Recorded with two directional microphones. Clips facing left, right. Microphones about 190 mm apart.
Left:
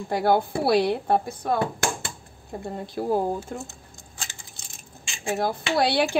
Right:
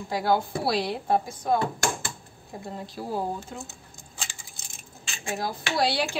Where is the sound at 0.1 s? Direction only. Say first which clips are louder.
Left 3 dB; 55° left (ahead or behind).